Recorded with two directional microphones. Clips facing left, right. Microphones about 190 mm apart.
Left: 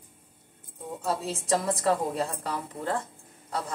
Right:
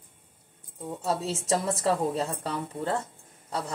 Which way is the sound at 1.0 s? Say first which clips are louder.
Right 1 dB; 25° right (ahead or behind).